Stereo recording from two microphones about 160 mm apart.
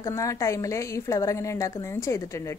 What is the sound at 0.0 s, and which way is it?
A woman's voice, 20° left (ahead or behind).